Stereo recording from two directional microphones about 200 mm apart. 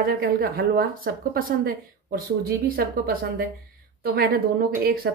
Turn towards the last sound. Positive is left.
turn(degrees=-50)  # may be behind; listen again after turning